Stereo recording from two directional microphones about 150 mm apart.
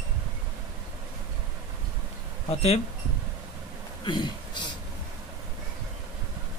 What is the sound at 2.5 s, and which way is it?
Speech, 45° left (ahead or behind).